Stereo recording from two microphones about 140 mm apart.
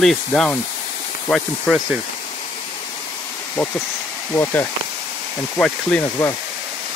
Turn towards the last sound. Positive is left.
turn(degrees=20)  # may be behind; listen again after turning